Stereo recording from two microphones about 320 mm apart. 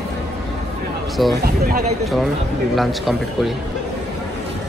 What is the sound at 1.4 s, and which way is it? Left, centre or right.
Speech, right.